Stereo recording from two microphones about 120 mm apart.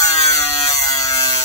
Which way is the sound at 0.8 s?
25° left (ahead or behind).